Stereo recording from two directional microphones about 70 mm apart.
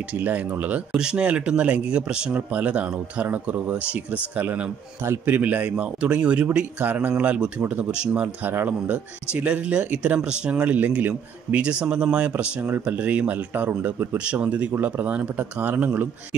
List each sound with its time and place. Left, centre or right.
0.1 s speech: right
0.9 s speech: centre